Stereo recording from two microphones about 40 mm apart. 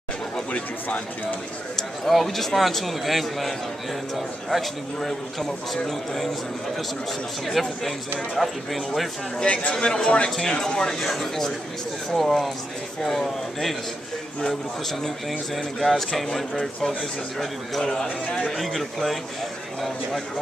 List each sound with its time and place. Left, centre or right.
0.5 s speech: left
1.8 s a man's voice: centre
7.4 s a man's voice: centre
9.5 s speech: left
9.8 s speech: centre
11.0 s a man's voice: centre
15.5 s a man's voice: centre